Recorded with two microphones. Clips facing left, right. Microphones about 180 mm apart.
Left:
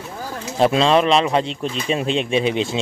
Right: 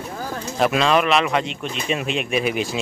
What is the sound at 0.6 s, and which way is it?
Speech, 30° left (ahead or behind).